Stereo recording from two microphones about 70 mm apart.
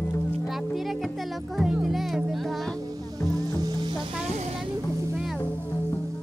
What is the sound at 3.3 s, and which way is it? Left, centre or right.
Music, right.